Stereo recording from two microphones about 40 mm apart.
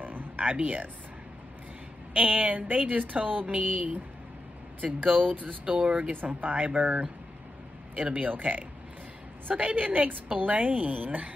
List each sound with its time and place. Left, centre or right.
0.0 s a sound: right
0.6 s a woman's voice: right
2.1 s a woman's voice: right
6.2 s a woman's voice: right